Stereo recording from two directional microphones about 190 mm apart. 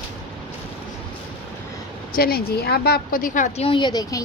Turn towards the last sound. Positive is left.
turn(degrees=20)  # may be behind; listen again after turning